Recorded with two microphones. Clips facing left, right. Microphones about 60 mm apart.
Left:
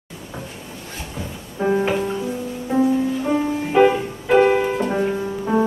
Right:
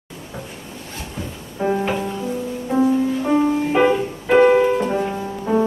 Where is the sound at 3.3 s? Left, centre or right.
Centre.